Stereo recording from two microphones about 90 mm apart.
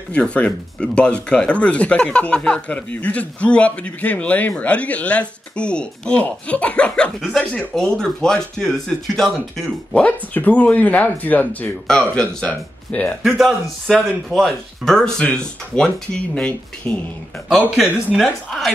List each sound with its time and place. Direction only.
0.1 s speech: 10° left (ahead or behind)
10.0 s speech: 20° left (ahead or behind)
13.2 s speech: centre (ahead or behind); by 17.0 s 15° left (ahead or behind)
17.6 s speech: 10° right (ahead or behind)